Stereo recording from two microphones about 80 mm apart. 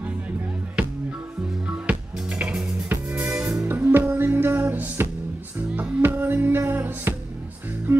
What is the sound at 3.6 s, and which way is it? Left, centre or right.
Music, right.